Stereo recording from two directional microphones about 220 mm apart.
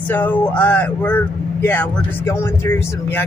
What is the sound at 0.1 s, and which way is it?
Speech, 10° left (ahead or behind).